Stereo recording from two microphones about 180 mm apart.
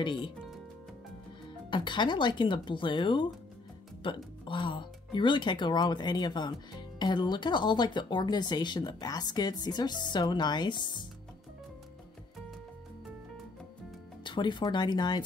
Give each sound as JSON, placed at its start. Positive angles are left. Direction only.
{"t": 0.0, "sound": "speech", "side_deg": 25}
{"t": 1.7, "sound": "speech", "side_deg": 25}
{"t": 14.2, "sound": "speech", "side_deg": 25}